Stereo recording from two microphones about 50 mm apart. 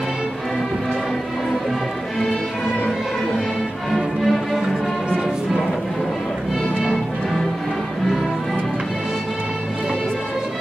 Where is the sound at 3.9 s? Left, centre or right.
Centre.